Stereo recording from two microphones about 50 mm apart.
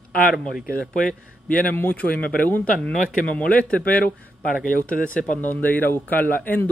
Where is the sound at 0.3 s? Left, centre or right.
Centre.